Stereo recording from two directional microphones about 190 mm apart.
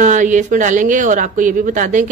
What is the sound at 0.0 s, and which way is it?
Speech, 40° right (ahead or behind).